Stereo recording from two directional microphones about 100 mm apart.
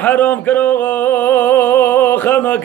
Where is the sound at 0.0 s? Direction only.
15° left (ahead or behind).